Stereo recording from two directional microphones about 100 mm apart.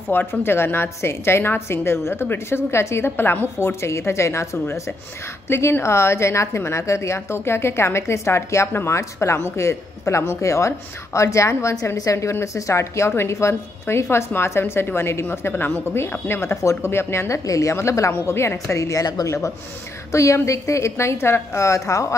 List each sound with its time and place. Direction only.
0.1 s a woman's voice: 20° left (ahead or behind)